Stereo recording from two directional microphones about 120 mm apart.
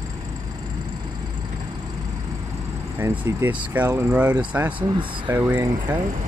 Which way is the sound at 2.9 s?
20° right (ahead or behind).